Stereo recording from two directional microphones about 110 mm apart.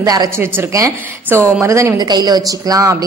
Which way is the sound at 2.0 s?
40° right (ahead or behind).